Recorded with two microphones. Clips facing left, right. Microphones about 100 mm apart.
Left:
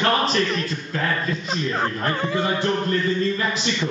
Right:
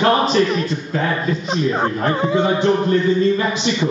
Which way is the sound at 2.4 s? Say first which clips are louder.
Right 6 dB; 25° right (ahead or behind).